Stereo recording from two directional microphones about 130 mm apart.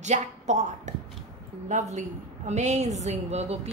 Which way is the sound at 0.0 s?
65° right (ahead or behind).